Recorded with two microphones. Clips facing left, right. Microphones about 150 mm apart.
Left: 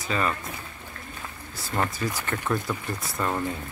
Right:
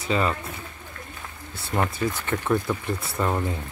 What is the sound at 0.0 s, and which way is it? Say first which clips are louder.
Speech: right 3 dB; 20° right (ahead or behind).